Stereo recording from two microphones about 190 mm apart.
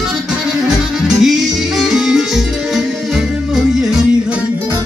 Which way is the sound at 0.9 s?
Centre (ahead or behind).